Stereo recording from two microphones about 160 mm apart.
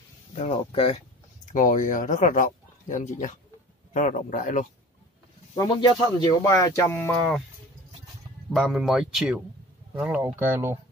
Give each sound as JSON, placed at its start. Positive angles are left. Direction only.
{"t": 0.3, "sound": "speech", "side_deg": 40}
{"t": 1.5, "sound": "speech", "side_deg": 55}
{"t": 5.6, "sound": "speech", "side_deg": 30}
{"t": 8.5, "sound": "speech", "side_deg": 0}